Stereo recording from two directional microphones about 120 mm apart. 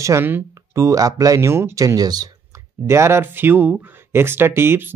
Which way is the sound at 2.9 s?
20° right (ahead or behind).